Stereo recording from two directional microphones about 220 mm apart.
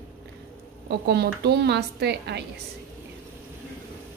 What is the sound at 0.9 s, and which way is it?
A woman's voice, 50° right (ahead or behind).